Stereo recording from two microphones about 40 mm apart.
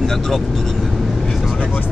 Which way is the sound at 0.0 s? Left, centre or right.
Centre.